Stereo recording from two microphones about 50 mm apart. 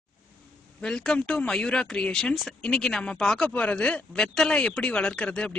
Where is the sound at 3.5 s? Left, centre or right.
Left.